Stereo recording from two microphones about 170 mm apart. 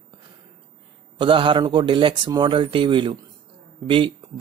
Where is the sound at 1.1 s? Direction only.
30° right (ahead or behind).